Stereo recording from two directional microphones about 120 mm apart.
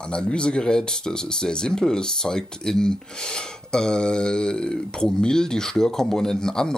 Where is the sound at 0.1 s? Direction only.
10° left (ahead or behind).